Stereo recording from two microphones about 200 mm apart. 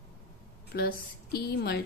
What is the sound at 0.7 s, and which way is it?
A woman's voice, 50° left (ahead or behind).